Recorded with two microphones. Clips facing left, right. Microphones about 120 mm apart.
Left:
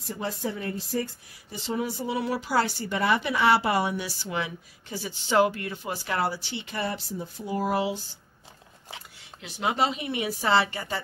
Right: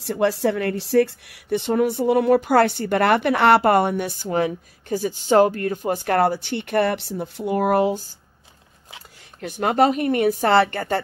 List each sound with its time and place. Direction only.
0.0 s speech: 75° right (ahead or behind); by 8.0 s 50° right (ahead or behind)
9.4 s speech: 50° right (ahead or behind)